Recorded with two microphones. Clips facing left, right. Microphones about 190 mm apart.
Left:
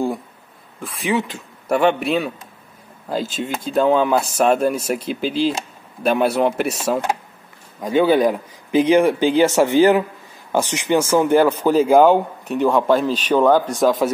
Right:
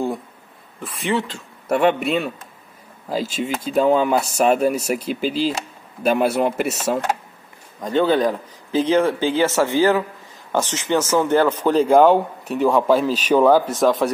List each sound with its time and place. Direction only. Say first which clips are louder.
0.7 s speech: left 1 dB; centre (ahead or behind)
1.2 s speech: left 1 dB; 15° left (ahead or behind)
1.9 s speech: left 1 dB; centre (ahead or behind)
7.8 s speech: left 2 dB; 10° left (ahead or behind)